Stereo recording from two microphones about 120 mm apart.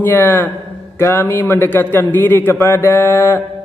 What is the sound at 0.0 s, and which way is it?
A man's voice, 20° left (ahead or behind).